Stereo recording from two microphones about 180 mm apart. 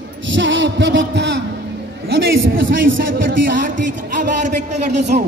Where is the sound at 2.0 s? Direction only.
55° right (ahead or behind).